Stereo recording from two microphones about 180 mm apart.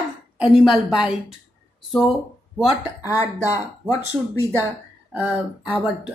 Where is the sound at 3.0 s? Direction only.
15° left (ahead or behind).